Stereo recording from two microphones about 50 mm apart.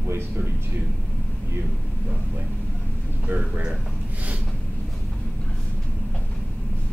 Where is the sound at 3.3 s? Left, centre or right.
Right.